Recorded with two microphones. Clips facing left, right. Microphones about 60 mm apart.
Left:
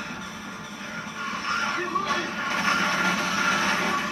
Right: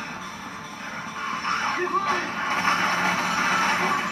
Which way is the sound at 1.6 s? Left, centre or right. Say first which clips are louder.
Right 4 dB; right.